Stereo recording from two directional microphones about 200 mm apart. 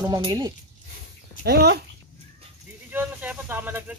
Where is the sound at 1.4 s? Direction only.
55° right (ahead or behind).